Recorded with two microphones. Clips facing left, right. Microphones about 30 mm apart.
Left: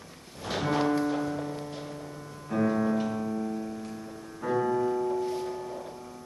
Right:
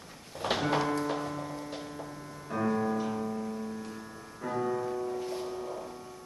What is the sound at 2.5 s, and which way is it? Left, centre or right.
Music, centre.